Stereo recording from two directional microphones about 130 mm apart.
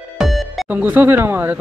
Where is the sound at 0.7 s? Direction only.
15° right (ahead or behind).